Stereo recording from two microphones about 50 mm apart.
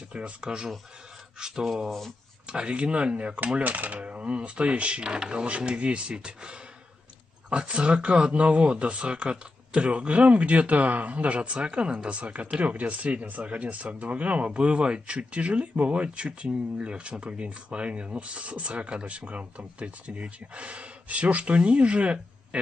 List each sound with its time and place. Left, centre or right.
0.1 s speech: right
1.4 s a sound: centre
2.4 s speech: centre